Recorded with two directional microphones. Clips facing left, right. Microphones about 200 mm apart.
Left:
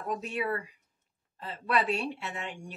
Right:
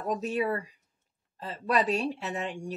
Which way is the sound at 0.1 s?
35° right (ahead or behind).